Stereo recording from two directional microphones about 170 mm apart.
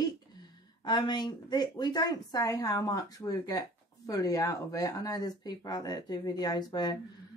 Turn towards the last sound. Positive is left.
turn(degrees=25)  # may be behind; listen again after turning